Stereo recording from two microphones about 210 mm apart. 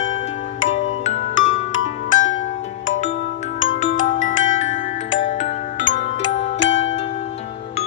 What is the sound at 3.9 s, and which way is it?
Marimba, 65° left (ahead or behind).